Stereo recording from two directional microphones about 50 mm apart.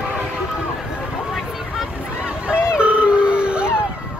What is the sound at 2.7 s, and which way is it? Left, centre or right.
Howl, right.